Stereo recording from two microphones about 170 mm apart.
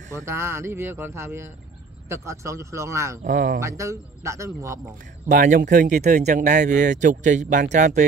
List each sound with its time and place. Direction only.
0.2 s speech: 15° right (ahead or behind)
3.3 s speech: 50° right (ahead or behind)
3.5 s speech: 15° right (ahead or behind)
5.3 s speech: 50° right (ahead or behind)